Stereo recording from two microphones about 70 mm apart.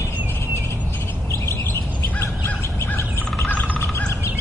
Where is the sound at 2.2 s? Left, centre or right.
Left.